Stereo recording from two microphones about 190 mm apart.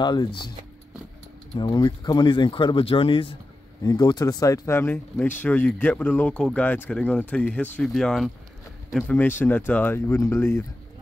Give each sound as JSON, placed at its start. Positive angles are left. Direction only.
{"t": 0.0, "sound": "speech", "side_deg": 20}
{"t": 1.6, "sound": "speech", "side_deg": 20}